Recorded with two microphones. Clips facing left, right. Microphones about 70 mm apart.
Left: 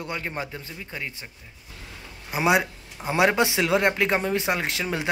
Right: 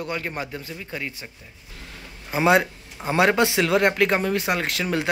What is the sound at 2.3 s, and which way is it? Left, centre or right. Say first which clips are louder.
Speech: right 3 dB; centre.